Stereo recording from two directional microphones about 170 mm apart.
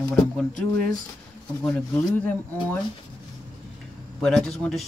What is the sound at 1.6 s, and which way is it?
Speech, 5° left (ahead or behind).